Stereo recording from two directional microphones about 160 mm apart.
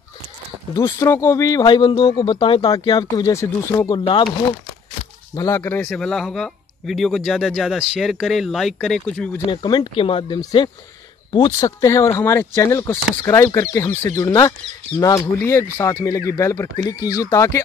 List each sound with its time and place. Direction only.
0.7 s speech: 20° left (ahead or behind)
4.0 s speech: 30° left (ahead or behind)
5.3 s speech: 20° left (ahead or behind)
5.9 s speech: 5° left (ahead or behind)
9.5 s speech: 30° left (ahead or behind)